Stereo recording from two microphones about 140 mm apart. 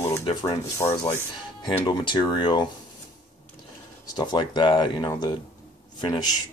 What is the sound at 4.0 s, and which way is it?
Speech, 30° left (ahead or behind).